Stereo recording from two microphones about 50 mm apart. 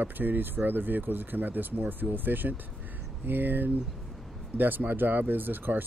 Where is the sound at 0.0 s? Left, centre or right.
Right.